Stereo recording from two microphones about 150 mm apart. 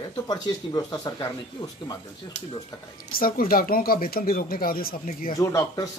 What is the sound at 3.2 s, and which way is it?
Speech, 75° left (ahead or behind).